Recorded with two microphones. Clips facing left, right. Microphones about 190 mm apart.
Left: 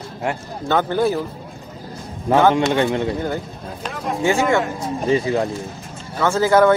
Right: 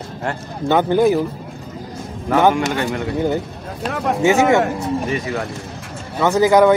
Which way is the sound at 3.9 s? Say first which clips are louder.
Right 5 dB; 60° right (ahead or behind).